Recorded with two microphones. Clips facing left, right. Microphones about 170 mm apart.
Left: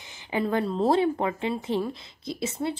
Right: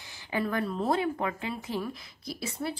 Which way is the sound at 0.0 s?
20° left (ahead or behind).